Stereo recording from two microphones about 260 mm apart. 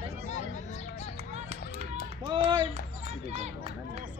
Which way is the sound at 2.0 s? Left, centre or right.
Centre.